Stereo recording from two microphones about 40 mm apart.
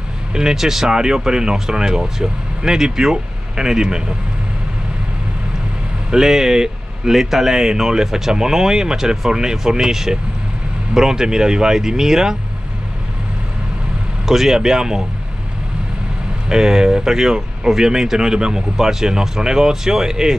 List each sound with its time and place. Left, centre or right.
0.3 s speech: centre
6.0 s speech: centre
14.2 s speech: centre
16.4 s speech: centre